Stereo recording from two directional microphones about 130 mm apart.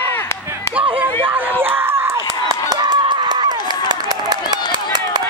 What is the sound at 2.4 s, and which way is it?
Run, 30° right (ahead or behind).